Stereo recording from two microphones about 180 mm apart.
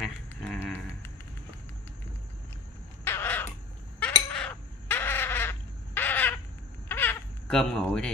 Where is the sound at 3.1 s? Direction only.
10° left (ahead or behind).